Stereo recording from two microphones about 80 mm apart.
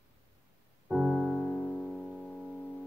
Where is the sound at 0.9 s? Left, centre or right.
Centre.